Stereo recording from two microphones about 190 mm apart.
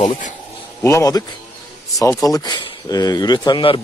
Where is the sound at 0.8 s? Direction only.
15° left (ahead or behind).